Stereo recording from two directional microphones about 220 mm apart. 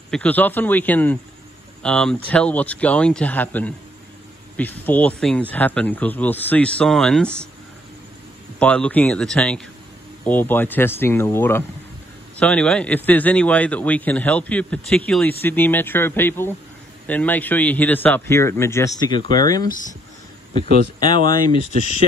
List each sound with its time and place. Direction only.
0.1 s a man's voice: 5° left (ahead or behind)
8.5 s a man's voice: 5° left (ahead or behind)
20.7 s speech: 20° left (ahead or behind)